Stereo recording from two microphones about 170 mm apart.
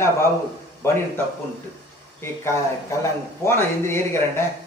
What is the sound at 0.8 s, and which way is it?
Speech, 15° left (ahead or behind).